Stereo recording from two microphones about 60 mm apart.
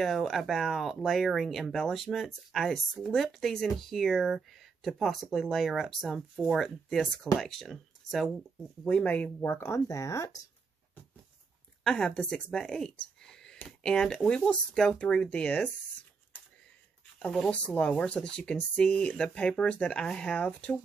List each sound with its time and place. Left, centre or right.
0.0 s speech: centre
8.8 s speech: left
9.4 s speech: left
9.8 s speech: left
11.8 s speech: centre
17.5 s speech: left